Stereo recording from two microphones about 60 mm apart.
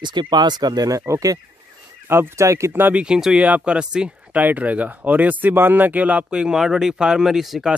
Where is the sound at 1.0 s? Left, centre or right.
Right.